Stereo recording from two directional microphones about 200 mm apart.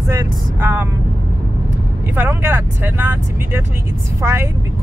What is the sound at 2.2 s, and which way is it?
Speech, 10° right (ahead or behind).